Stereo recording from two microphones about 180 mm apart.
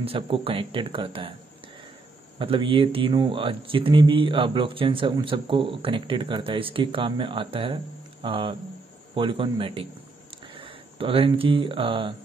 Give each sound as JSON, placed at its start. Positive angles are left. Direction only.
{"t": 0.0, "sound": "speech", "side_deg": -30}
{"t": 2.3, "sound": "speech", "side_deg": -30}